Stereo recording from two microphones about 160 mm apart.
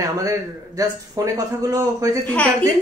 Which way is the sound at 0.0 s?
20° right (ahead or behind).